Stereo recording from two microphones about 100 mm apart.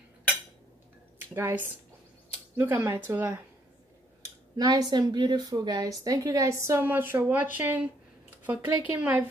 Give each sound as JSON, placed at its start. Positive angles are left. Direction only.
{"t": 1.2, "sound": "speech", "side_deg": -20}
{"t": 4.2, "sound": "speech", "side_deg": -40}